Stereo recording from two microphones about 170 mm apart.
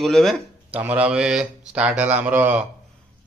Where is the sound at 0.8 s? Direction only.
10° right (ahead or behind).